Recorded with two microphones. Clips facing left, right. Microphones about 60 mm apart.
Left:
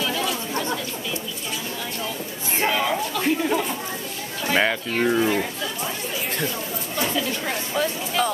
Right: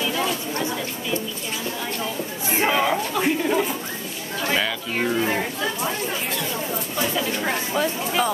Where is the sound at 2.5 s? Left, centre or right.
Centre.